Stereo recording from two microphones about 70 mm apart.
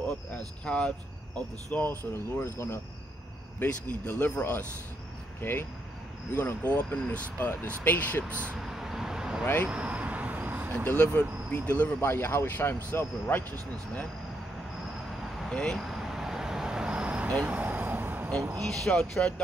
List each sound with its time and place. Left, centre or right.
0.7 s speech: centre
1.8 s speech: left
3.5 s speech: left
5.4 s speech: left
8.5 s vehicle: centre
9.7 s a sound: centre
10.9 s speech: left
12.0 s speech: left
15.2 s vehicle: centre
15.5 s speech: centre
15.8 s vehicle: centre
17.4 s a sound: right
18.4 s speech: right
18.9 s speech: centre